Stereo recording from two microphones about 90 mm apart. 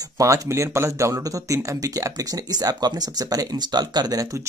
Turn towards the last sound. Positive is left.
turn(degrees=-50)  # may be behind; listen again after turning